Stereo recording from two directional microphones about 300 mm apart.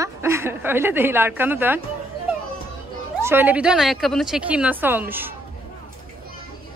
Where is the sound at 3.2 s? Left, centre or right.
Centre.